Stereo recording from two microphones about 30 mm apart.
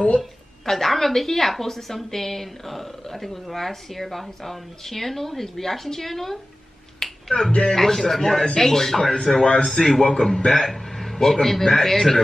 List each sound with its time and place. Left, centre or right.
0.7 s speech: centre
7.0 s finger snapping: centre
7.7 s speech: centre